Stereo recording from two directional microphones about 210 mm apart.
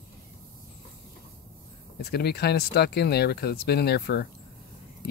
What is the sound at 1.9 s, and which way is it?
Speech, 50° left (ahead or behind).